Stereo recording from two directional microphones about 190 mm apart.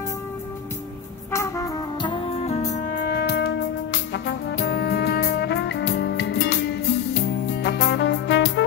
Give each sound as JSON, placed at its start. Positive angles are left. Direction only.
{"t": 1.3, "sound": "music", "side_deg": 15}